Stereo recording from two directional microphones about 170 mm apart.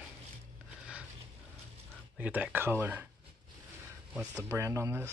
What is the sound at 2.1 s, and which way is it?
Speech, 10° right (ahead or behind).